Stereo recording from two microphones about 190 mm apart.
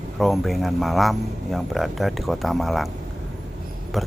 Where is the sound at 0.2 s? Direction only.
Centre (ahead or behind).